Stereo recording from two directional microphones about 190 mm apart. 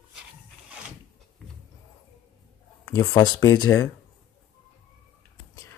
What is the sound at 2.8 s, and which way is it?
Speech, 15° left (ahead or behind).